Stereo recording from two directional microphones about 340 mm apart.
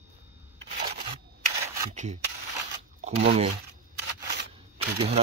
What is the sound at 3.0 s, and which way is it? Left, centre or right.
Speech, centre.